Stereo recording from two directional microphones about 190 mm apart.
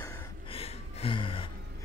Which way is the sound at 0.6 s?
30° left (ahead or behind).